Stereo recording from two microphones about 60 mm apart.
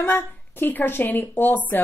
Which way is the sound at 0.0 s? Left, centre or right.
Left.